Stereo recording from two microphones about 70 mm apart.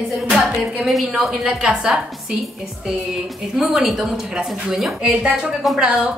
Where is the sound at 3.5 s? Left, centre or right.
Centre.